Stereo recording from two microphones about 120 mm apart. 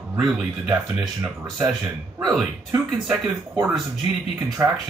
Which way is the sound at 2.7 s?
20° right (ahead or behind).